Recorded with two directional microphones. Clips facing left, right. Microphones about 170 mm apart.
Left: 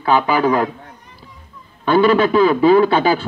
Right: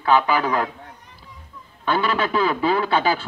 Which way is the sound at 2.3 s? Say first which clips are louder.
Left 8 dB; 20° left (ahead or behind).